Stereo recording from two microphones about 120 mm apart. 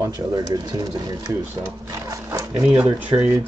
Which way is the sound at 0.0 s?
35° right (ahead or behind).